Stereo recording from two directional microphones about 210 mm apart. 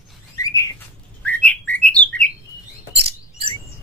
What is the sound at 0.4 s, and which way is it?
Bird, 15° left (ahead or behind).